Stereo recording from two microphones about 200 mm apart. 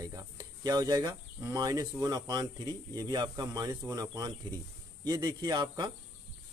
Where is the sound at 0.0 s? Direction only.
15° right (ahead or behind).